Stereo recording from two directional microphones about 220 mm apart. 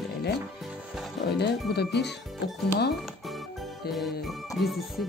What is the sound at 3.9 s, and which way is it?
Music, centre (ahead or behind).